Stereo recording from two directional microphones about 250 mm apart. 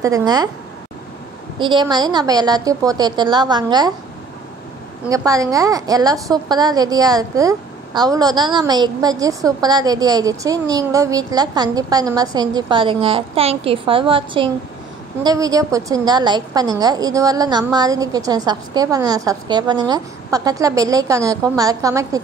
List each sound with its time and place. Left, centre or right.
0.0 s a woman's voice: centre
1.6 s a woman's voice: centre
5.1 s a woman's voice: centre